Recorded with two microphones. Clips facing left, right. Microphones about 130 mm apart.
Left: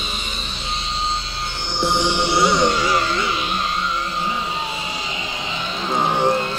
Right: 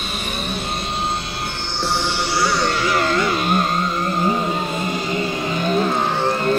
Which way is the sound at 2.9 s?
50° right (ahead or behind).